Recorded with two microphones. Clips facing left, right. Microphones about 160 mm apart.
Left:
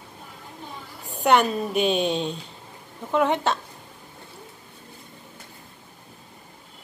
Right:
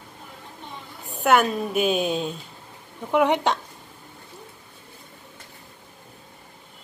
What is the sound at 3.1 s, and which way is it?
Speech, 15° right (ahead or behind).